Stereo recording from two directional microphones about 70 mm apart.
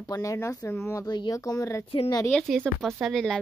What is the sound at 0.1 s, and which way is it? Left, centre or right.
Speech, left.